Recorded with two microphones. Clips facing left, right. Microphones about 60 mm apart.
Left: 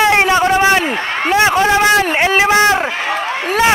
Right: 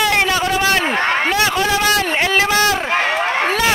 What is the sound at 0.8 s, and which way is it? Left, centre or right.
Speech, right.